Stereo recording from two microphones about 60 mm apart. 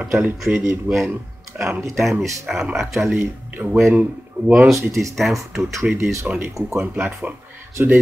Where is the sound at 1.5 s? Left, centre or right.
Right.